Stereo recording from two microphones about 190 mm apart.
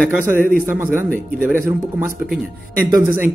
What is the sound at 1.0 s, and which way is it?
Speech, 10° left (ahead or behind).